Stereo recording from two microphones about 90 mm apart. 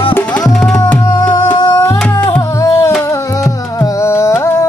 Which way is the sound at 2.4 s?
35° left (ahead or behind).